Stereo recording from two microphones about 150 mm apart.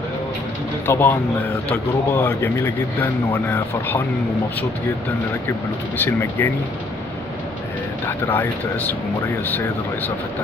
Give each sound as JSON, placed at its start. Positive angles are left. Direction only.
{"t": 0.8, "sound": "speech", "side_deg": 15}
{"t": 5.9, "sound": "speech", "side_deg": 15}
{"t": 8.3, "sound": "speech", "side_deg": 15}